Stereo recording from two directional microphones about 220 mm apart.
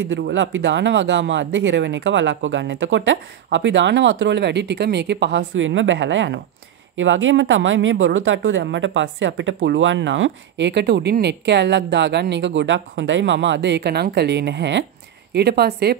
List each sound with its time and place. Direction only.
0.0 s a woman's voice: 55° right (ahead or behind)